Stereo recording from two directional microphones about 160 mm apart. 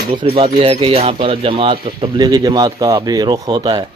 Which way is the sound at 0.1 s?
30° right (ahead or behind).